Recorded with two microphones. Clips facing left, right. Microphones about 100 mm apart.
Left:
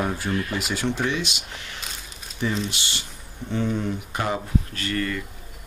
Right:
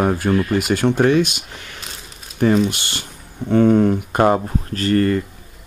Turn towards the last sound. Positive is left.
turn(degrees=-40)  # may be behind; listen again after turning